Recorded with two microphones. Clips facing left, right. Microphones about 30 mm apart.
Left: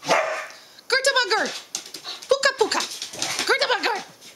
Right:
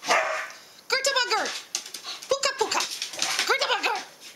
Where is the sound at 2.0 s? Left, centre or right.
Left.